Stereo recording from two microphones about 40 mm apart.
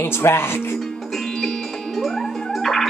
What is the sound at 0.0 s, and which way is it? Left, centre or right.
Speech, left.